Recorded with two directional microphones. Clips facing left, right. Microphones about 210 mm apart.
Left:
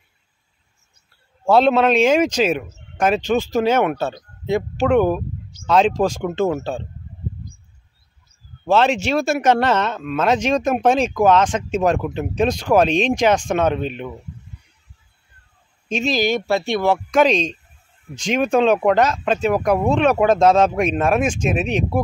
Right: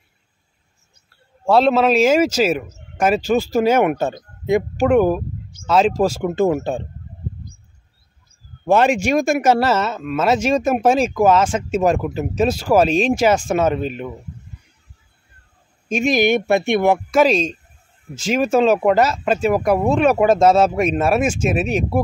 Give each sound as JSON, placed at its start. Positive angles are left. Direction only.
{"t": 1.4, "sound": "a man's voice", "side_deg": 0}
{"t": 8.6, "sound": "speech", "side_deg": -10}
{"t": 15.9, "sound": "speech", "side_deg": -15}